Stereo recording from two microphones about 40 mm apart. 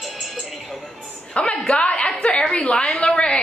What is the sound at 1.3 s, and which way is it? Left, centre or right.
Speech, left.